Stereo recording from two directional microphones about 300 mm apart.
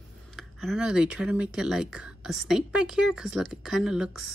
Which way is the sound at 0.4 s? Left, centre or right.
Centre.